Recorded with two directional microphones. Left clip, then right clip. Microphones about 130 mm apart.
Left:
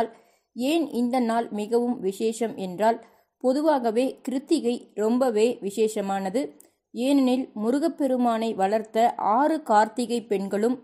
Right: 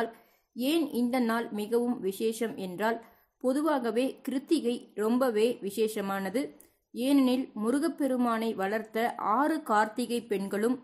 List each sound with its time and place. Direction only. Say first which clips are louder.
0.6 s a woman's voice: left 4 dB; 20° left (ahead or behind)